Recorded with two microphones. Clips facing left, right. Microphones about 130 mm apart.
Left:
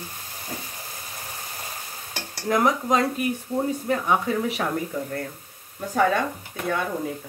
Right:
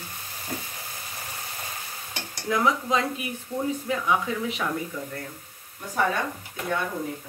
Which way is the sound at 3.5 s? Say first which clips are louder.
Left 1 dB; 35° left (ahead or behind).